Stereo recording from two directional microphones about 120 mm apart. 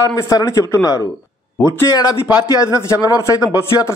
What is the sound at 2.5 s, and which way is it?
Speech, 25° left (ahead or behind).